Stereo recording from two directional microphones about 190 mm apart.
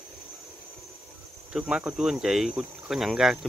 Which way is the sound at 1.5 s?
5° right (ahead or behind).